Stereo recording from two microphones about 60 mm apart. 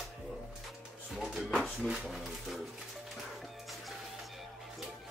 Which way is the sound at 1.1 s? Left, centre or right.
Centre.